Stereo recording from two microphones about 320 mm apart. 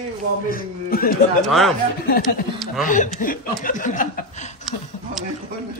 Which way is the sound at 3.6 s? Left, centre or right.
Left.